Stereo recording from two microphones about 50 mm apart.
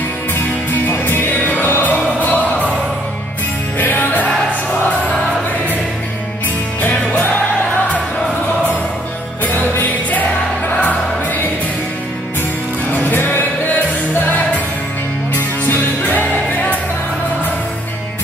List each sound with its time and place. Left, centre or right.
0.8 s music: left
3.7 s music: left
6.8 s music: left
9.4 s music: left
12.9 s music: left
16.0 s music: left